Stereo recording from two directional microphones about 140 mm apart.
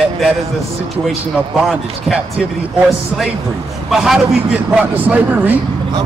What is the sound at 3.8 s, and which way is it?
Speech, 5° right (ahead or behind).